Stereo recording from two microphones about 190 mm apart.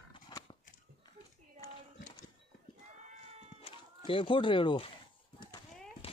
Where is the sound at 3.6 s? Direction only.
30° left (ahead or behind).